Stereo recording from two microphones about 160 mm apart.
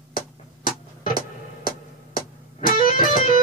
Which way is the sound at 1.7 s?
65° left (ahead or behind).